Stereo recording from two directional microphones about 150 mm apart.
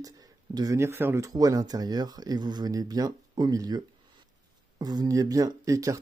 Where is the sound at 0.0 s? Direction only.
25° right (ahead or behind).